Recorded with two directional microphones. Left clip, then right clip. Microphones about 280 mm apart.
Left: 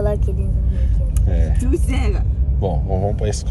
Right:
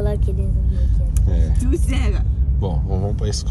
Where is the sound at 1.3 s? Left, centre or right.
Centre.